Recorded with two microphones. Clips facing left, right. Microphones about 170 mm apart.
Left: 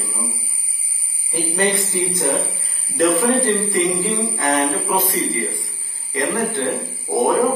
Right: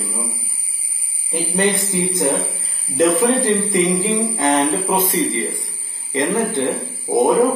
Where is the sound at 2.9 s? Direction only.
20° right (ahead or behind).